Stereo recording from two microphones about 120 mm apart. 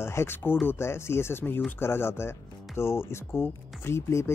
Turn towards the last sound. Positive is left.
turn(degrees=20)  # may be behind; listen again after turning